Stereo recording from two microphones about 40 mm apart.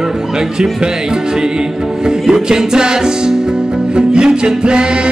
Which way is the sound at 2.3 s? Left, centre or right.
Centre.